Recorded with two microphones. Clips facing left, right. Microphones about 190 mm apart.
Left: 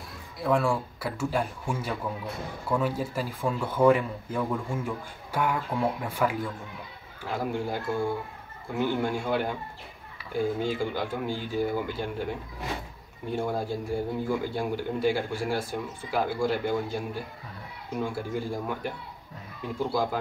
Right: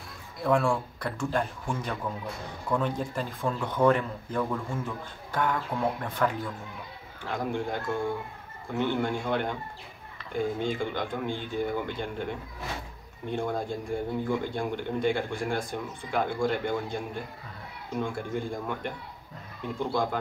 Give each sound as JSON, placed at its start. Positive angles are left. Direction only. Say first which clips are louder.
{"t": 0.4, "sound": "speech", "louder": "even", "side_deg": 0}